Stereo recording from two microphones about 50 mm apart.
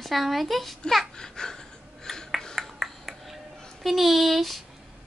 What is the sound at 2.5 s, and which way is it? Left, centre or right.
Music, centre.